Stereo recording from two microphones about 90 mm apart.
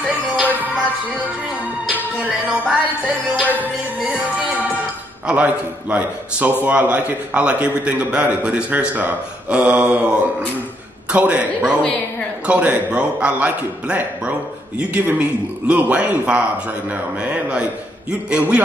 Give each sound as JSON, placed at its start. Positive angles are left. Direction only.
{"t": 0.0, "sound": "music", "side_deg": -15}
{"t": 1.9, "sound": "music", "side_deg": -15}
{"t": 5.2, "sound": "a man's voice", "side_deg": -15}